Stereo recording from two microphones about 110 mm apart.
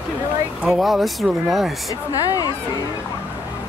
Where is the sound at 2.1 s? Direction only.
30° left (ahead or behind).